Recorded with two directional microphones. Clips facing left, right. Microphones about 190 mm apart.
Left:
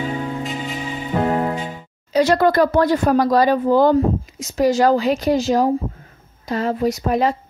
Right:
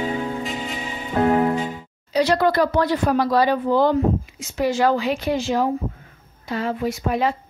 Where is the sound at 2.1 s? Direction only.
45° left (ahead or behind).